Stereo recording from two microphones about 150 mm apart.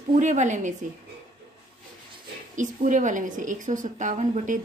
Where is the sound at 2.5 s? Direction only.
55° right (ahead or behind).